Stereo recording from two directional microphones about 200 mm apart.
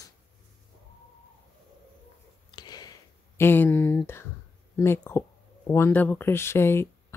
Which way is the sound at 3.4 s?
10° left (ahead or behind).